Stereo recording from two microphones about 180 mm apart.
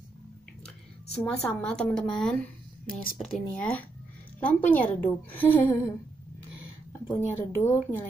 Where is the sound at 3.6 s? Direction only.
10° left (ahead or behind).